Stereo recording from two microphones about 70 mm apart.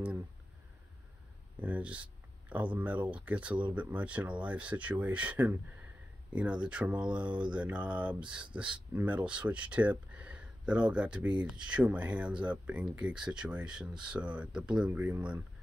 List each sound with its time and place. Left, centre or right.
1.6 s speech: centre
14.9 s speech: right